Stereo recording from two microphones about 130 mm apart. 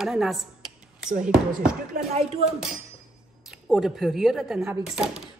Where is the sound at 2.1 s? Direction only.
55° right (ahead or behind).